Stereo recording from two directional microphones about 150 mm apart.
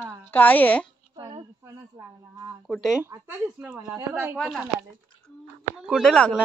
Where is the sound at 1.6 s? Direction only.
20° right (ahead or behind).